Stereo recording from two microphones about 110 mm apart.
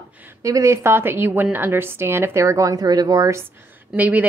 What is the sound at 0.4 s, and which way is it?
A woman's voice, 30° right (ahead or behind).